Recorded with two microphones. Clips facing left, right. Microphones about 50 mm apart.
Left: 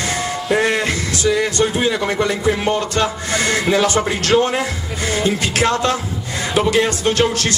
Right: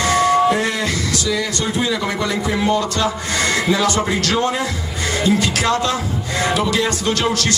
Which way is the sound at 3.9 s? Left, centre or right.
Left.